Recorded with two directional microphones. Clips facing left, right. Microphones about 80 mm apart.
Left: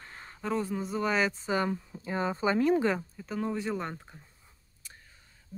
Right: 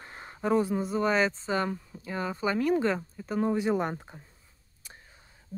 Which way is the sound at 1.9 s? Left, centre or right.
Left.